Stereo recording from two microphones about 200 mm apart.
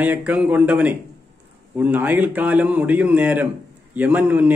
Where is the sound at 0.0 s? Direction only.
5° right (ahead or behind).